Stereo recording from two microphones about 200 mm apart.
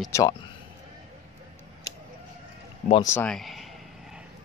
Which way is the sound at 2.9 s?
15° left (ahead or behind).